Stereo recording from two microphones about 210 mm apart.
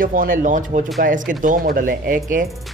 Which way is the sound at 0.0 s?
40° right (ahead or behind).